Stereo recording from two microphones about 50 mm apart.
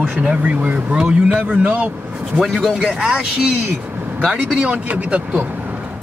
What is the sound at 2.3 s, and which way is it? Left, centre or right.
Speech, centre.